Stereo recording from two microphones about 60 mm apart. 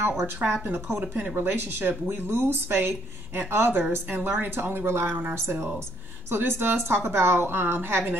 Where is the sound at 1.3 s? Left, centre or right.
Right.